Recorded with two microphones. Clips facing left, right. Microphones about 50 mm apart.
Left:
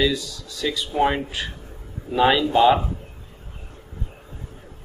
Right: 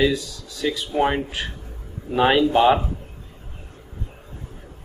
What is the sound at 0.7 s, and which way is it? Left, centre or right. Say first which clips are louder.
Speech: left 1 dB; centre.